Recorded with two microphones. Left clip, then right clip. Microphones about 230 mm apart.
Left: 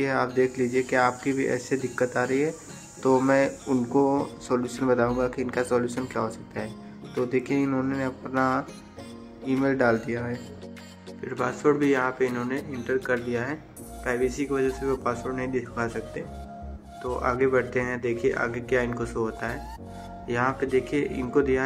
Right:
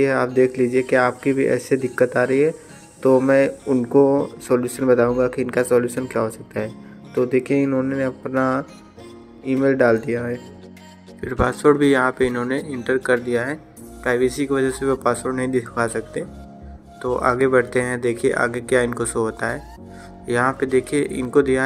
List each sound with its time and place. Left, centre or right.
0.0 s speech: centre
17.2 s speech: right